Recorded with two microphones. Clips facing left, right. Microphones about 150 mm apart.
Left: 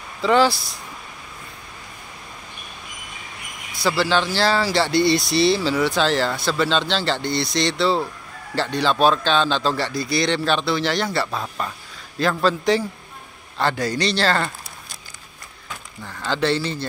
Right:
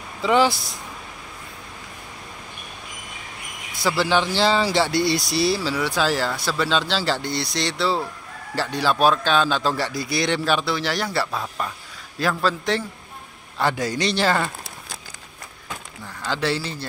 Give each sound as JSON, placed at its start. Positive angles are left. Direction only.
{"t": 0.2, "sound": "speech", "side_deg": -15}
{"t": 3.8, "sound": "speech", "side_deg": -15}
{"t": 13.6, "sound": "speech", "side_deg": -10}
{"t": 16.3, "sound": "speech", "side_deg": -5}